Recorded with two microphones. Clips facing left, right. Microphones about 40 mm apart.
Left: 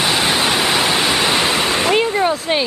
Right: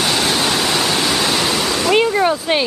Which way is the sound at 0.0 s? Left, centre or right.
Centre.